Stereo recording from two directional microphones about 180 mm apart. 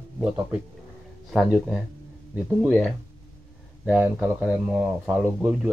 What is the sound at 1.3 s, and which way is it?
Speech, centre (ahead or behind).